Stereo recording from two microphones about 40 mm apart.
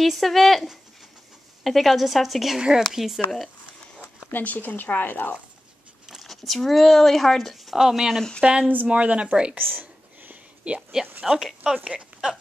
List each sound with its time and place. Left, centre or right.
0.0 s a woman's voice: centre
4.3 s speech: left
6.2 s speech: centre
7.7 s speech: centre
8.4 s speech: right
9.6 s a sound: right
10.6 s speech: right
11.2 s speech: centre
12.1 s a sound: right